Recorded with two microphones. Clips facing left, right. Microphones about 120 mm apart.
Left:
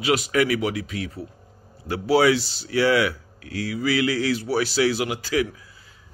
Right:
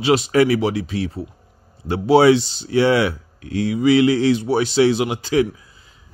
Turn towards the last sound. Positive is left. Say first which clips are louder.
# right 5 dB
turn(degrees=-25)  # may be behind; listen again after turning